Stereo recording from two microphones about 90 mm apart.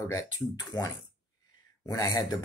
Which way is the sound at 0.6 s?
45° left (ahead or behind).